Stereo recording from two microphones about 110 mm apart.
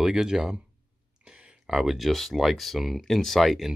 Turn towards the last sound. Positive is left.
turn(degrees=0)  # may be behind; listen again after turning